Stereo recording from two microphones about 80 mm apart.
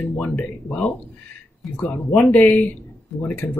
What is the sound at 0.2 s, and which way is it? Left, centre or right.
Speech, left.